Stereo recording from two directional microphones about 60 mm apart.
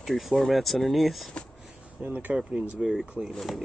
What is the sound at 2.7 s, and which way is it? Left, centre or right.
Speech, centre.